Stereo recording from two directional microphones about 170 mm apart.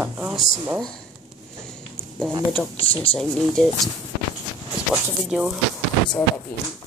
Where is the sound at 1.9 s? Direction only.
Centre (ahead or behind).